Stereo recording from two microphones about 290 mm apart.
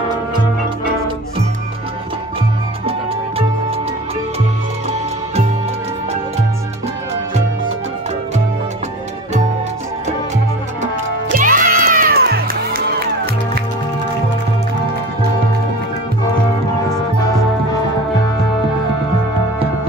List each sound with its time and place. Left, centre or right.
11.2 s music: right